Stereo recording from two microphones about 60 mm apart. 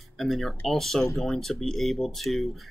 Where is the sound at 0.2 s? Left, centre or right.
Centre.